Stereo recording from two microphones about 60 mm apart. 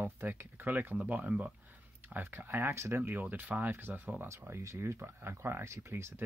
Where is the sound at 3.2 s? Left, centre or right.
Right.